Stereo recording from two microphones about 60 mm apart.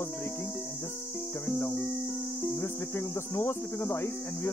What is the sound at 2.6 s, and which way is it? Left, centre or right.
Music, left.